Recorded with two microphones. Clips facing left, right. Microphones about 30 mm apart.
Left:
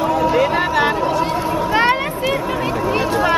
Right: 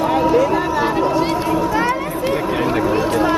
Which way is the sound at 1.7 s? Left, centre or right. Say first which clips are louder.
Left 3 dB; left.